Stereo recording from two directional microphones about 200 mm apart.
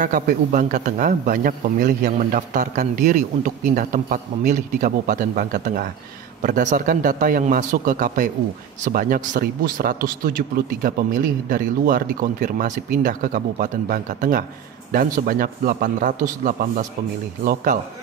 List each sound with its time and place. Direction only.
0.0 s a man's voice: 40° right (ahead or behind)